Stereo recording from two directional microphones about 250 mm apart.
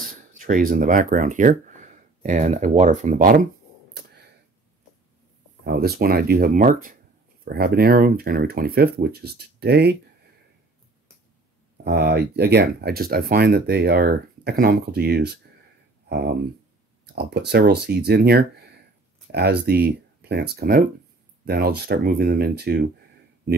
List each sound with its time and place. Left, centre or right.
0.3 s speech: right
5.6 s speech: right
11.8 s speech: right